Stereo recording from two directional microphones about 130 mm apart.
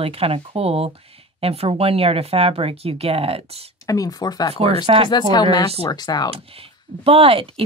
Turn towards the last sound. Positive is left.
turn(degrees=-45)  # may be behind; listen again after turning